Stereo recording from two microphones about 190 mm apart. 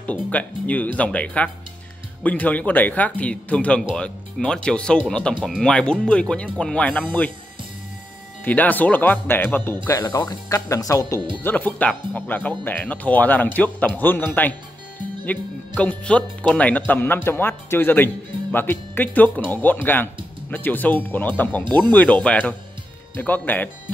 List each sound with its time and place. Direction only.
0.0 s speech: 5° left (ahead or behind)
8.5 s speech: 10° left (ahead or behind)